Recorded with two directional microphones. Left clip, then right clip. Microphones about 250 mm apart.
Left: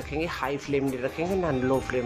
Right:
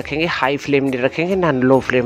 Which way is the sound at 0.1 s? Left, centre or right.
Right.